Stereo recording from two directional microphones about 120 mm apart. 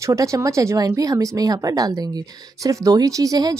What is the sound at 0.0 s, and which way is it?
Speech, 25° right (ahead or behind).